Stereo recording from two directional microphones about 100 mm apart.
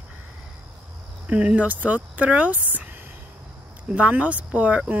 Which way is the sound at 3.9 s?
15° right (ahead or behind).